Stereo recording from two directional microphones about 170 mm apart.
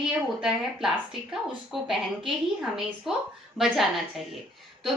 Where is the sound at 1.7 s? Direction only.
Centre (ahead or behind).